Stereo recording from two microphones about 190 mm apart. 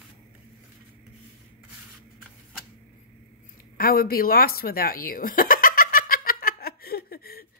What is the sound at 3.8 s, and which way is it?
Chuckle, 50° left (ahead or behind).